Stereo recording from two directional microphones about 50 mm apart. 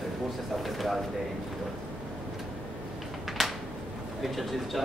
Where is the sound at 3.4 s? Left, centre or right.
Centre.